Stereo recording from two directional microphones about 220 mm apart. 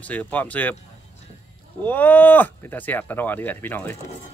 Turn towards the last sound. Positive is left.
turn(degrees=10)  # may be behind; listen again after turning